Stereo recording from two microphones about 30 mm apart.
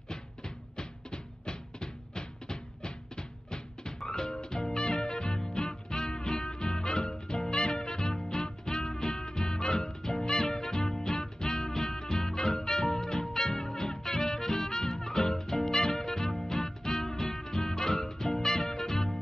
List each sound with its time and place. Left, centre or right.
0.1 s music: left